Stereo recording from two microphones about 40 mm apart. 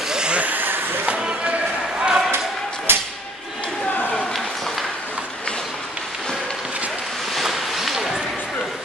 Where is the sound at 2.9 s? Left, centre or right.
Right.